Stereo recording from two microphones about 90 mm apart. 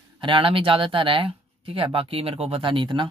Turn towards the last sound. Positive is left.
turn(degrees=-65)  # may be behind; listen again after turning